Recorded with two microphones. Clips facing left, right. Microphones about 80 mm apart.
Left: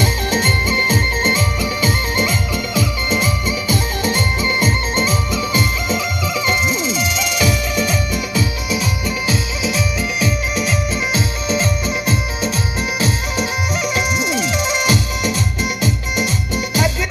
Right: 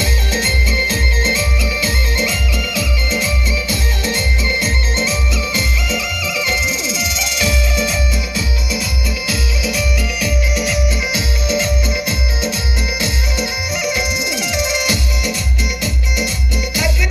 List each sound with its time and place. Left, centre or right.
0.0 s music: left
9.3 s music: left